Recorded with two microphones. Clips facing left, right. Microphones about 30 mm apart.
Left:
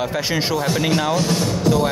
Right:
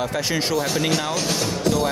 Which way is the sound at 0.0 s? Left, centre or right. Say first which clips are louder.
Left 2 dB; centre.